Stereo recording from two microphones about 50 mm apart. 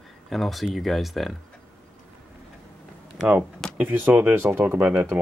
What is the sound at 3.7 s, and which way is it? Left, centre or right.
Speech, right.